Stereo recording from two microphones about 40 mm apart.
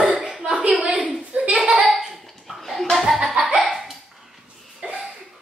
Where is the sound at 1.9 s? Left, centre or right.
Centre.